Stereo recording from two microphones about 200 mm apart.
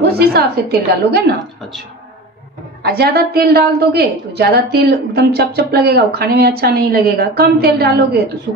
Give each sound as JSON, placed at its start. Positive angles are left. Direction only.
{"t": 0.0, "sound": "a woman's voice", "side_deg": -50}
{"t": 2.8, "sound": "a woman's voice", "side_deg": -50}